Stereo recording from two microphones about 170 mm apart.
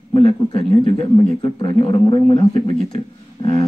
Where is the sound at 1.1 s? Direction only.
25° left (ahead or behind).